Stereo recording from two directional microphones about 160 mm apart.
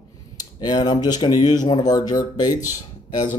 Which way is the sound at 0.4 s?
25° left (ahead or behind).